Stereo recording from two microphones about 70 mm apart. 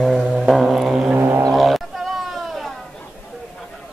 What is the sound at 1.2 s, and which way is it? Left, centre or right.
Didgeridoo, right.